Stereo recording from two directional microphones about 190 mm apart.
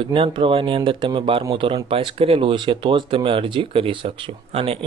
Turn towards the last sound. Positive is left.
turn(degrees=-30)  # may be behind; listen again after turning